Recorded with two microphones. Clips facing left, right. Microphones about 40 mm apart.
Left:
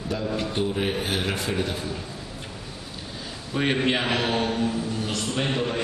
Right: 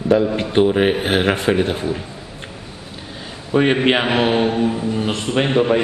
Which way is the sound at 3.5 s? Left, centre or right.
Right.